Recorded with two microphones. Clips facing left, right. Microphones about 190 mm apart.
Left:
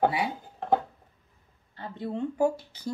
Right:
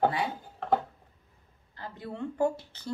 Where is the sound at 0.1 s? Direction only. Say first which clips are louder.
Left 2 dB; 10° left (ahead or behind).